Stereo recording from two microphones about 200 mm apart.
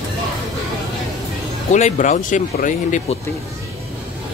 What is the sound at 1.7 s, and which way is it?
Speech, 40° left (ahead or behind).